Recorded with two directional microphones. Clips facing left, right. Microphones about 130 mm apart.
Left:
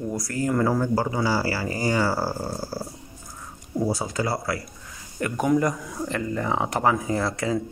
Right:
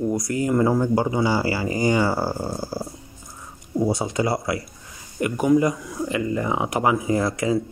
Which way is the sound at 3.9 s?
25° right (ahead or behind).